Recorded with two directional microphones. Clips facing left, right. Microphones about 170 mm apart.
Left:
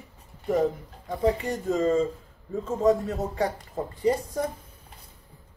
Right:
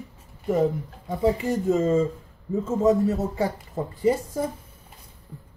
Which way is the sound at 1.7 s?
20° right (ahead or behind).